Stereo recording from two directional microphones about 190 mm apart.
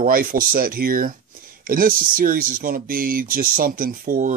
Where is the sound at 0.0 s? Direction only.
50° right (ahead or behind).